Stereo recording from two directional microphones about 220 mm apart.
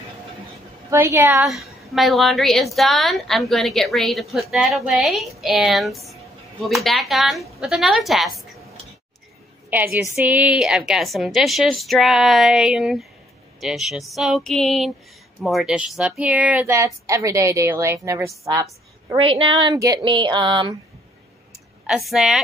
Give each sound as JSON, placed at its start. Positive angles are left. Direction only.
{"t": 0.8, "sound": "a woman's voice", "side_deg": -15}
{"t": 10.1, "sound": "a woman's voice", "side_deg": -5}
{"t": 21.8, "sound": "a woman's voice", "side_deg": 0}